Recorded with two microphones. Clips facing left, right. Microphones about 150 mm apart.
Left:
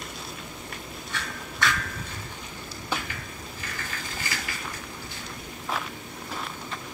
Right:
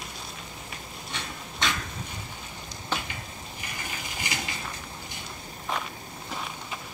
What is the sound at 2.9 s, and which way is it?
Dishes, 20° right (ahead or behind).